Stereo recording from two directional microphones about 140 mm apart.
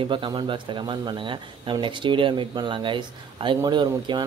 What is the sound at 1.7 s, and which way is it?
Speech, 35° right (ahead or behind).